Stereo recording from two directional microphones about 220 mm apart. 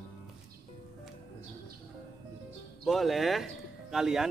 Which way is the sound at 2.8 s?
Centre (ahead or behind).